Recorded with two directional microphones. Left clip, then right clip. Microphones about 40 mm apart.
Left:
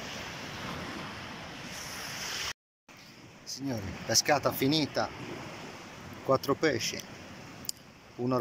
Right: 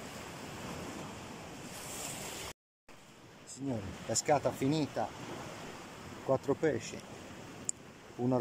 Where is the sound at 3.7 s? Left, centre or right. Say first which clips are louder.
Left 4 dB; right.